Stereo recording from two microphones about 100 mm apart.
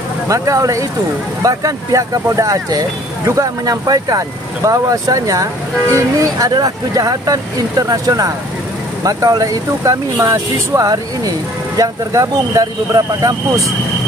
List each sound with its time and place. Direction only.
0.3 s speech: 35° right (ahead or behind)